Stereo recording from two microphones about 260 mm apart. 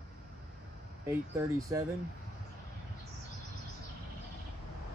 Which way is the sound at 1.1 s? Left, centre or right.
Centre.